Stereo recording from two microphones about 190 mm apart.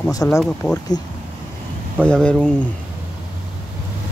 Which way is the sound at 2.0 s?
5° left (ahead or behind).